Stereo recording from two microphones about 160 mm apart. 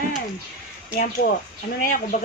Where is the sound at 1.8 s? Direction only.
60° left (ahead or behind).